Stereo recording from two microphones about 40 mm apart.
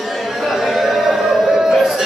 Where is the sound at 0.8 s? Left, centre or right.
Centre.